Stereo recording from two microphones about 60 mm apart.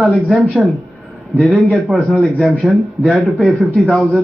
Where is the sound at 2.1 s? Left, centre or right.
Left.